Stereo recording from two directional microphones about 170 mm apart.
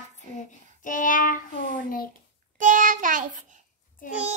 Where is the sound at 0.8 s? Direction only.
50° left (ahead or behind).